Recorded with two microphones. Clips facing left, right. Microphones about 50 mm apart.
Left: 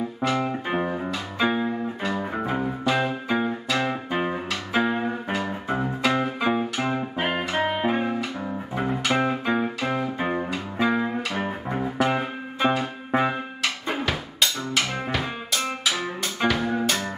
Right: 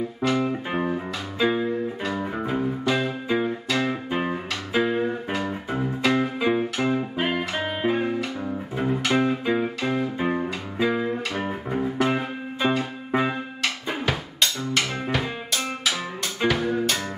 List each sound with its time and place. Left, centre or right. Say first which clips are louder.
0.5 s music: even; centre
7.2 s music: left 2 dB; left
14.0 s drum: right 2 dB; centre